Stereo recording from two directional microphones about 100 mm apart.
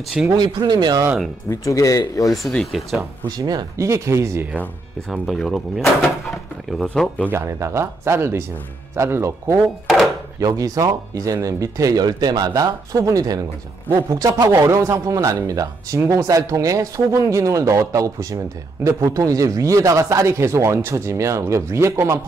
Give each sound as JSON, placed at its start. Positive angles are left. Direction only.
{"t": 0.4, "sound": "speech", "side_deg": -45}
{"t": 1.5, "sound": "speech", "side_deg": 35}
{"t": 2.3, "sound": "speech", "side_deg": 0}
{"t": 3.3, "sound": "speech", "side_deg": -40}
{"t": 5.1, "sound": "speech", "side_deg": 0}
{"t": 6.9, "sound": "speech", "side_deg": 15}
{"t": 7.2, "sound": "speech", "side_deg": -25}
{"t": 10.4, "sound": "speech", "side_deg": -40}